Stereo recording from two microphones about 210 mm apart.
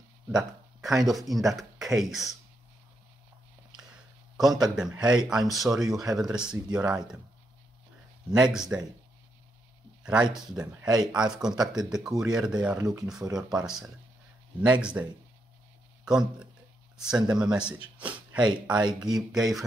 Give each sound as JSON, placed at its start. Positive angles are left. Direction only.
{"t": 0.3, "sound": "speech", "side_deg": -5}
{"t": 4.4, "sound": "speech", "side_deg": 0}
{"t": 8.3, "sound": "speech", "side_deg": -5}
{"t": 10.0, "sound": "speech", "side_deg": -5}
{"t": 13.2, "sound": "speech", "side_deg": -15}
{"t": 13.5, "sound": "speech", "side_deg": 0}
{"t": 16.1, "sound": "speech", "side_deg": -5}